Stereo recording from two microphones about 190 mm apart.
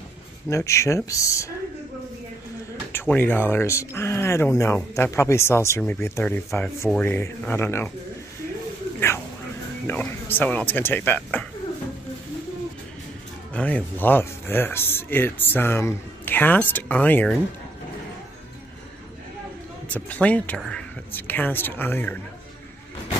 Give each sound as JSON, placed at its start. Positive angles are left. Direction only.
{"t": 0.5, "sound": "speech", "side_deg": 15}
{"t": 2.9, "sound": "speech", "side_deg": 10}
{"t": 9.8, "sound": "speech", "side_deg": 10}
{"t": 13.5, "sound": "speech", "side_deg": 5}
{"t": 19.9, "sound": "speech", "side_deg": 5}